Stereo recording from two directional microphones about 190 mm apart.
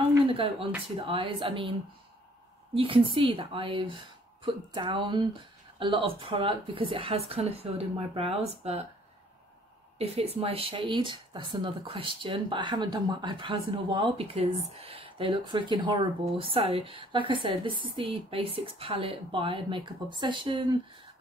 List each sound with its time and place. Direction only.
0.3 s speech: 30° right (ahead or behind)
9.9 s speech: 30° right (ahead or behind)